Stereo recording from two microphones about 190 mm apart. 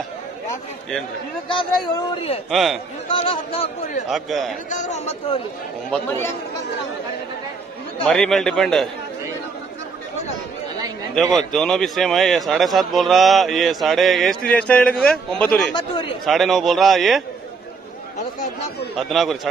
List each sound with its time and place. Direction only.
1.5 s a man's voice: 25° left (ahead or behind)
2.5 s a man's voice: centre (ahead or behind)
3.1 s speech: 30° left (ahead or behind)
4.1 s a man's voice: centre (ahead or behind)
4.6 s speech: 40° left (ahead or behind)
5.9 s speech: 10° left (ahead or behind)
8.1 s a man's voice: centre (ahead or behind)
11.1 s a man's voice: centre (ahead or behind)
15.7 s a man's voice: 25° left (ahead or behind)
16.3 s a man's voice: centre (ahead or behind)
18.9 s a man's voice: centre (ahead or behind)